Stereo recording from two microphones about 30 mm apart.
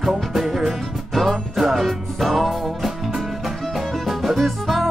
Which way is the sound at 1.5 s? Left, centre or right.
Centre.